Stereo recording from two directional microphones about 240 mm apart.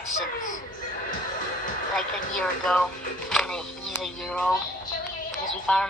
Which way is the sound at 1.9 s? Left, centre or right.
Centre.